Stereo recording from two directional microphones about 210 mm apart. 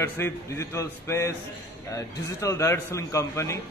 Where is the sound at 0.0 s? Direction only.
10° left (ahead or behind).